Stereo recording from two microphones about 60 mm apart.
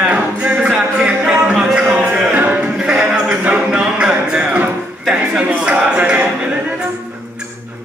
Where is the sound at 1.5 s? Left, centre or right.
Centre.